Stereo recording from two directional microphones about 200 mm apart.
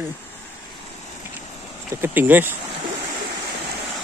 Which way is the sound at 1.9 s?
10° right (ahead or behind).